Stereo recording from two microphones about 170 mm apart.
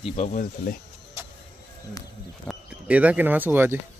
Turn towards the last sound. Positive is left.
turn(degrees=-10)  # may be behind; listen again after turning